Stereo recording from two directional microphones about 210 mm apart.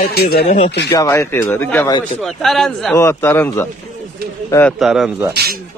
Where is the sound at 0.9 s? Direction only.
15° left (ahead or behind).